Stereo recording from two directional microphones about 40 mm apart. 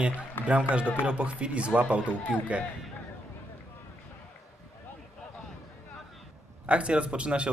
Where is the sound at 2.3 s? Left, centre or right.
Centre.